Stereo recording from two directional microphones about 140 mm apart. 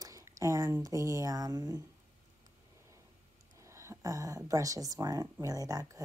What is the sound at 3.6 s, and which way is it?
Speech, 20° right (ahead or behind).